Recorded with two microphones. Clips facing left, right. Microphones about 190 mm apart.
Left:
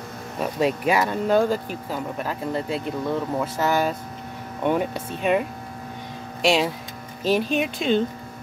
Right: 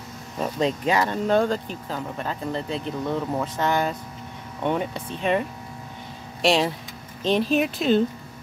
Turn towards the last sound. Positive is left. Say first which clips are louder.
# right 1 dB
turn(degrees=0)  # may be behind; listen again after turning